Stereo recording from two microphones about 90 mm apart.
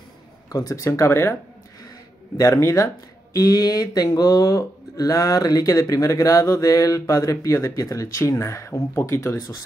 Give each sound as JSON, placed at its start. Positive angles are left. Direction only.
{"t": 0.5, "sound": "speech", "side_deg": 40}
{"t": 2.3, "sound": "speech", "side_deg": 35}